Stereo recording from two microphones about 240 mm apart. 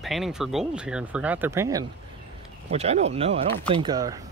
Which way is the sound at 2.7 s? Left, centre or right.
Right.